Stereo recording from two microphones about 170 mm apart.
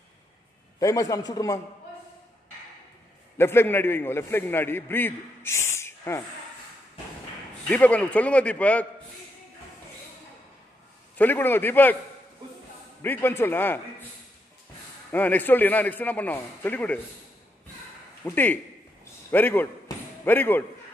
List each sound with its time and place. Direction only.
0.7 s a man's voice: 20° left (ahead or behind)
3.3 s a man's voice: 15° left (ahead or behind)
7.6 s a man's voice: 10° left (ahead or behind)
11.1 s a man's voice: 10° left (ahead or behind)
13.0 s a man's voice: 10° left (ahead or behind)
15.0 s a man's voice: 10° left (ahead or behind)
18.2 s a man's voice: 10° left (ahead or behind)